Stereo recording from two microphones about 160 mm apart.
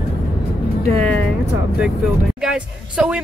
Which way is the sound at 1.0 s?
5° left (ahead or behind).